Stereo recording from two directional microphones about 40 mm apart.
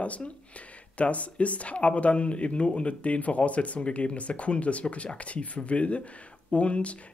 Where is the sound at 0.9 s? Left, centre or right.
Left.